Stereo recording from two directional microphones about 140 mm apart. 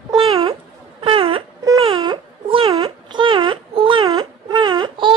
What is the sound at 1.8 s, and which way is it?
Baby cry, 35° right (ahead or behind).